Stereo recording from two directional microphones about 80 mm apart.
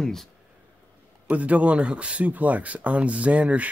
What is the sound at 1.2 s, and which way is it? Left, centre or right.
Speech, centre.